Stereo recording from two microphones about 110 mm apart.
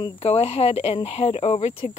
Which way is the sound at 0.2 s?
70° left (ahead or behind).